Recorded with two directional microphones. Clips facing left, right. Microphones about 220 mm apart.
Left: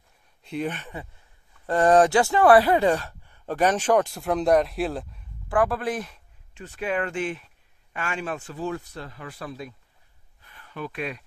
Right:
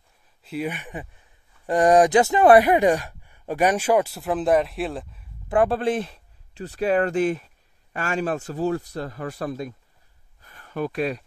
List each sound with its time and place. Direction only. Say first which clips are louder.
0.4 s speech: right 1 dB; 5° right (ahead or behind)
5.5 s speech: right 3 dB; 25° right (ahead or behind); by 9.8 s 45° right (ahead or behind)
10.4 s a sound: right 7 dB; 45° right (ahead or behind)